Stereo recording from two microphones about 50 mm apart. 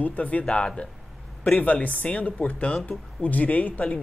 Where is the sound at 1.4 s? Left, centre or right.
Left.